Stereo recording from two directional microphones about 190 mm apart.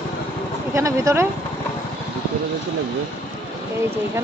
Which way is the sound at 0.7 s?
15° right (ahead or behind).